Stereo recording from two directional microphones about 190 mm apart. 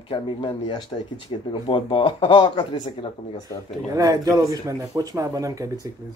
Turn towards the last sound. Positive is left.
turn(degrees=-20)  # may be behind; listen again after turning